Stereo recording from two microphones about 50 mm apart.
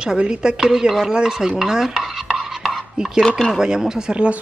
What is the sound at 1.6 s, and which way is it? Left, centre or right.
Stir, centre.